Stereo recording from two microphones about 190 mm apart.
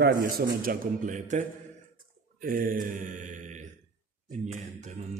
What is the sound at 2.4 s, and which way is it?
Mantra, 45° right (ahead or behind).